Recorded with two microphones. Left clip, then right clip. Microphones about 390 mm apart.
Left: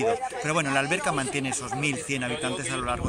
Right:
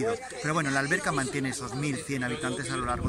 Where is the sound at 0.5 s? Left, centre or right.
Centre.